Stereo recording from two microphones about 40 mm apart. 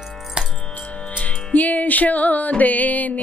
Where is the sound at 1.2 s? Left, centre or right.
Left.